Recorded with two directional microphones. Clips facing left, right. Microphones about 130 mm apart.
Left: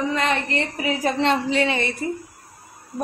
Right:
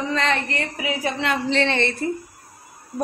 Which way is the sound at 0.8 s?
40° left (ahead or behind).